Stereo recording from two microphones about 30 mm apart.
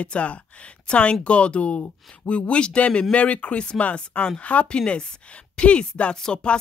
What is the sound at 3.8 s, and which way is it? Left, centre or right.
Speech, left.